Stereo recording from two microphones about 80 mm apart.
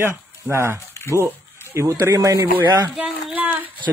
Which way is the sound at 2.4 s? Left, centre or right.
Right.